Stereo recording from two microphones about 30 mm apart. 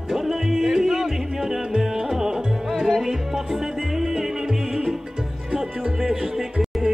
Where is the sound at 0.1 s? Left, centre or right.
Centre.